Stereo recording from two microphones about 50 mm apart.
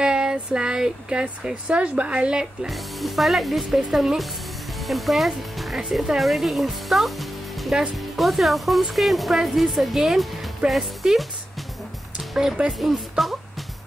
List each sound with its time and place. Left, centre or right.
0.0 s speech: centre
2.7 s speech: centre
4.7 s speech: centre
12.2 s music: centre
13.2 s speech: centre